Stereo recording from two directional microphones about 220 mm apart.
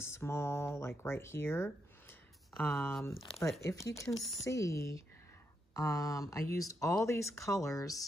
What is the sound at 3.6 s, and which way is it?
Speech, 15° left (ahead or behind).